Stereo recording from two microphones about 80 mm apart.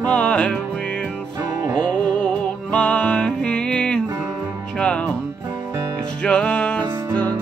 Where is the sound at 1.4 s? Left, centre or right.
Right.